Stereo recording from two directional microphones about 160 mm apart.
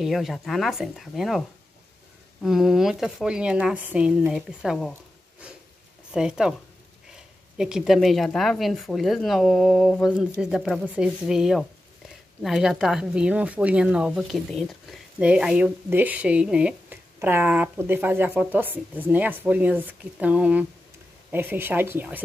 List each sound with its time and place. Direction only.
0.0 s a woman's voice: centre (ahead or behind)
2.4 s a woman's voice: centre (ahead or behind)
6.1 s a woman's voice: 5° right (ahead or behind)